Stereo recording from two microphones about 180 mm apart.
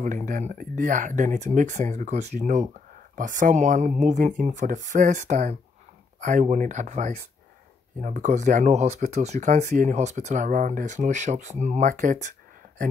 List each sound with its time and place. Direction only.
0.0 s speech: 45° right (ahead or behind)